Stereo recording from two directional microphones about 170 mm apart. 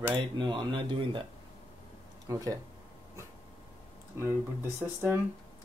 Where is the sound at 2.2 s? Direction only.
20° right (ahead or behind).